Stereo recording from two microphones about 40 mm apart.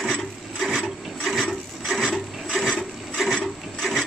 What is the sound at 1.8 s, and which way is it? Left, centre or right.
Filing, centre.